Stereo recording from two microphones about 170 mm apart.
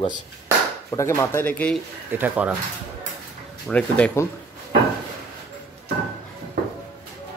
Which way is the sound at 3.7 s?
10° left (ahead or behind).